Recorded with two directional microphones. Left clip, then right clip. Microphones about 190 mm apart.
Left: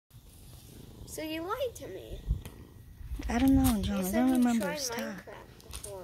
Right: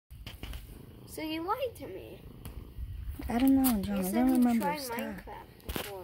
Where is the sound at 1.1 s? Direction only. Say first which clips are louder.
Right 1 dB; 55° right (ahead or behind).